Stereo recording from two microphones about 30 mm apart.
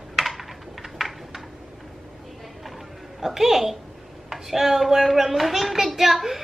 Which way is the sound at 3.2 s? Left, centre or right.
Centre.